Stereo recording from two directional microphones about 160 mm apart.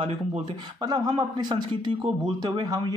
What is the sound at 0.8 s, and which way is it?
A man's voice, 25° right (ahead or behind).